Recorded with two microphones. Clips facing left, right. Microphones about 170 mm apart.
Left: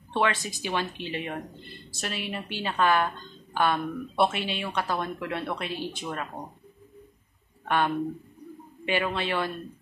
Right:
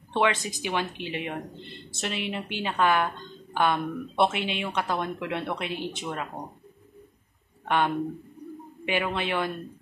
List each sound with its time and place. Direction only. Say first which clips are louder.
0.1 s a woman's voice: right 2 dB; 15° right (ahead or behind)
7.6 s a woman's voice: even; 20° right (ahead or behind)